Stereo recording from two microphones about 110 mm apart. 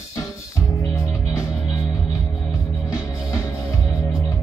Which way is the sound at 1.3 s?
30° left (ahead or behind).